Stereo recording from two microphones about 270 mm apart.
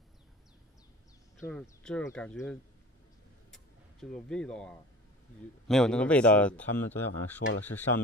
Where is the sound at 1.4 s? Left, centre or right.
Centre.